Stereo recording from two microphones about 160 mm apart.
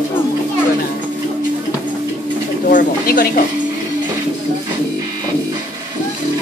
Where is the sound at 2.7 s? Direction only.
60° left (ahead or behind).